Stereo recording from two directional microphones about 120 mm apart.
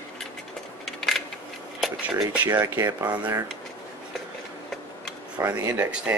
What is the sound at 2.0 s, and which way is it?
Speech, 10° right (ahead or behind).